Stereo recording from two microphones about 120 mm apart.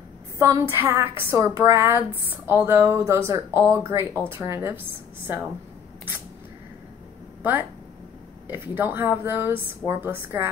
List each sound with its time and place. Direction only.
0.4 s a woman's voice: 25° right (ahead or behind)
8.5 s a woman's voice: 20° right (ahead or behind)